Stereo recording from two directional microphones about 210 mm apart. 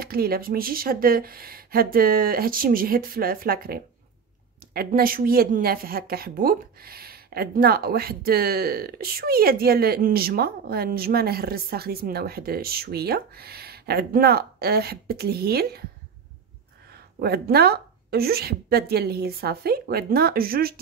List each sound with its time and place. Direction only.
0.0 s a woman's voice: 45° right (ahead or behind)
17.2 s a woman's voice: 50° right (ahead or behind)